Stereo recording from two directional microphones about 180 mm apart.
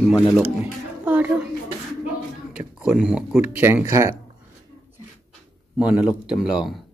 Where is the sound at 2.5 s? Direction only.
5° right (ahead or behind).